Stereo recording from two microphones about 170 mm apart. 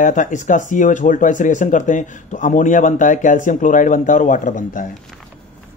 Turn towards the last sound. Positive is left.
turn(degrees=50)  # may be behind; listen again after turning